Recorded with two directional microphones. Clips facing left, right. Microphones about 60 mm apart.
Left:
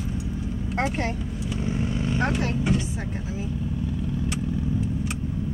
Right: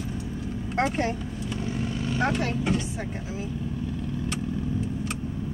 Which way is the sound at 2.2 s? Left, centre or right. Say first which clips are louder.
Right 1 dB; centre.